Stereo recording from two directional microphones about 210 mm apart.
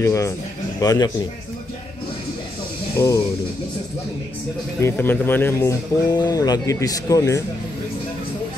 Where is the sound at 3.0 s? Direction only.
15° left (ahead or behind).